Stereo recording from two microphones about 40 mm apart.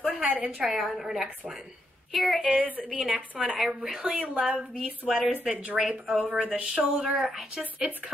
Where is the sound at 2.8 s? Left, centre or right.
Right.